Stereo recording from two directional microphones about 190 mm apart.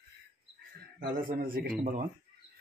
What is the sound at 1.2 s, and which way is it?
Speech, 50° right (ahead or behind).